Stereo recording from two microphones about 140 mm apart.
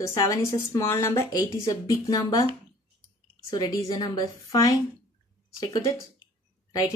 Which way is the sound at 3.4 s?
30° left (ahead or behind).